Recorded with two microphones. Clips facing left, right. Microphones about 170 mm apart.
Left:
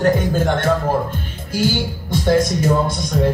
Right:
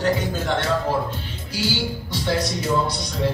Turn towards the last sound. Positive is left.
turn(degrees=50)  # may be behind; listen again after turning